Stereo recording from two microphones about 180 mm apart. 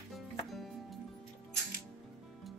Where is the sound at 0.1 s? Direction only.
Centre (ahead or behind).